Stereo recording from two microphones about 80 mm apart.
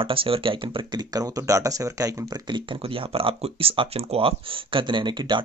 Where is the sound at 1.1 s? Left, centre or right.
Right.